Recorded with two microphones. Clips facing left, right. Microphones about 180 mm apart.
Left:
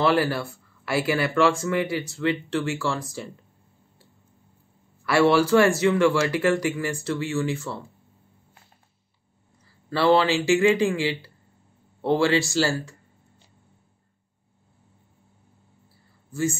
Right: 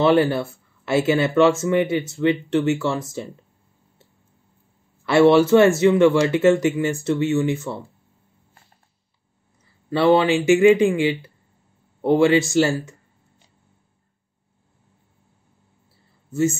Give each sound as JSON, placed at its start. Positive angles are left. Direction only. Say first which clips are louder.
{"t": 0.0, "sound": "speech", "louder": "right 5 dB", "side_deg": -25}
{"t": 5.0, "sound": "speech", "louder": "right 5 dB", "side_deg": -25}
{"t": 9.8, "sound": "speech", "louder": "right 3 dB", "side_deg": -20}
{"t": 16.3, "sound": "speech", "louder": "right 6 dB", "side_deg": -25}